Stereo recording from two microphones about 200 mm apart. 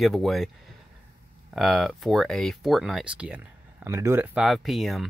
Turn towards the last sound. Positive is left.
turn(degrees=0)  # may be behind; listen again after turning